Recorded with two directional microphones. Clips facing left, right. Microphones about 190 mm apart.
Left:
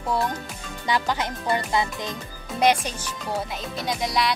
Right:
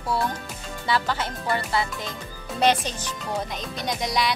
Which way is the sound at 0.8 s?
15° left (ahead or behind).